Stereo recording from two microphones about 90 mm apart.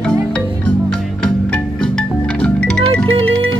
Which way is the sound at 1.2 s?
10° left (ahead or behind).